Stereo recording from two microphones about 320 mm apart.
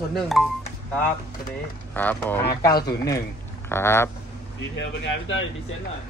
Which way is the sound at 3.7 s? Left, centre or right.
Centre.